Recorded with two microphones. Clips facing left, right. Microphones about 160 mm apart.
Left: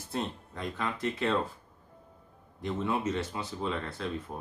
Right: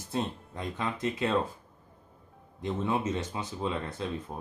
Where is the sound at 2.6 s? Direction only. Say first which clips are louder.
Right 1 dB; 20° right (ahead or behind).